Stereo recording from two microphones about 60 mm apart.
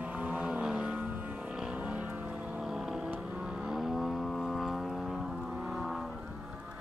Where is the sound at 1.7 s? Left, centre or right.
Right.